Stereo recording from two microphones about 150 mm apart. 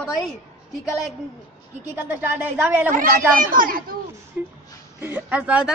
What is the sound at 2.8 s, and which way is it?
Speech, 65° right (ahead or behind).